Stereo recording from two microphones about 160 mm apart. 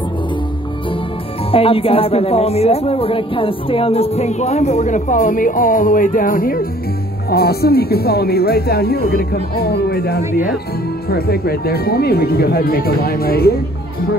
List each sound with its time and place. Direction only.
1.5 s speech: 35° left (ahead or behind); by 6.7 s 65° left (ahead or behind)
7.2 s speech: 80° left